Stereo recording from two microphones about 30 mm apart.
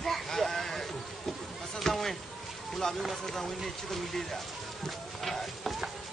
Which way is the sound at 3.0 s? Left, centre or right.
Centre.